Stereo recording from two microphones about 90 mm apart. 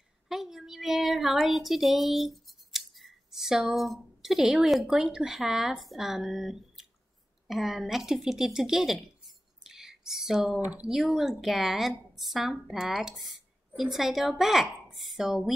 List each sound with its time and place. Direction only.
0.3 s a woman's voice: 5° right (ahead or behind)
10.6 s speech: 15° right (ahead or behind)
10.9 s a woman's voice: centre (ahead or behind)